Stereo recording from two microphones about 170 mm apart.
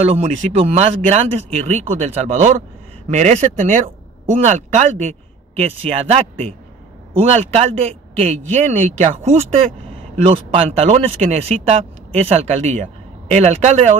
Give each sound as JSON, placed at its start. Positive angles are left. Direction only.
{"t": 0.0, "sound": "speech", "side_deg": -35}